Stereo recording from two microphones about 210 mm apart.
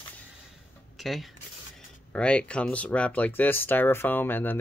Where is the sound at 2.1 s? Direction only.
5° left (ahead or behind).